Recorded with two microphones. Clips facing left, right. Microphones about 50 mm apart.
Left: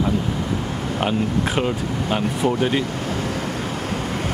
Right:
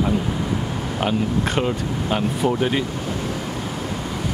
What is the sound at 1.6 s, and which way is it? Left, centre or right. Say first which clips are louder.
Speech: even; centre.